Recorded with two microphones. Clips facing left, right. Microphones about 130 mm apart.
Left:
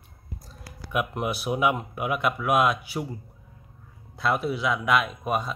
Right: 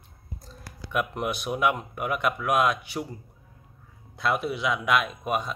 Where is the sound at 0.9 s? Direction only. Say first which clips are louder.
Left 1 dB; 5° left (ahead or behind).